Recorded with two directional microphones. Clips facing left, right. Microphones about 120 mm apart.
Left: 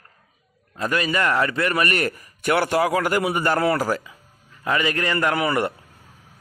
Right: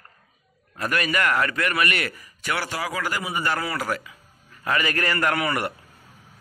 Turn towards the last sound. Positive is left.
turn(degrees=20)  # may be behind; listen again after turning